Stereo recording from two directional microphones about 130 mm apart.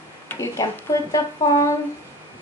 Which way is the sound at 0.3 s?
20° left (ahead or behind).